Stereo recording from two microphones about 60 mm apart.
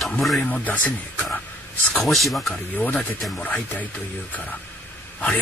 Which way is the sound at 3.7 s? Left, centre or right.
Left.